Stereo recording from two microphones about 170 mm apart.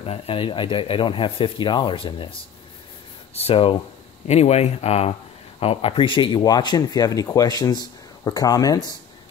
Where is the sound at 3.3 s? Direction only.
35° left (ahead or behind).